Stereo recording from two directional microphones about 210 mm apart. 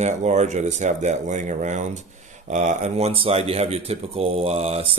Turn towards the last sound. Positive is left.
turn(degrees=-30)  # may be behind; listen again after turning